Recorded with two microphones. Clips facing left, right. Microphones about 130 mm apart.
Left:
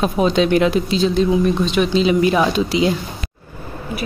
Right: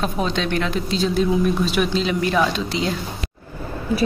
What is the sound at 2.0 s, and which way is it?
Speech, 10° left (ahead or behind).